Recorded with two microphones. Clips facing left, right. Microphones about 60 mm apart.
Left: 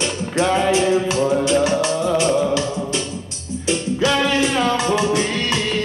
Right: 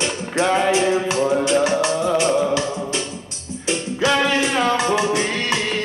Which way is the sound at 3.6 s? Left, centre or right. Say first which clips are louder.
Left 1 dB; right.